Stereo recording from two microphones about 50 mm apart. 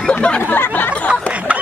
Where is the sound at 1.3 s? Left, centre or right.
Right.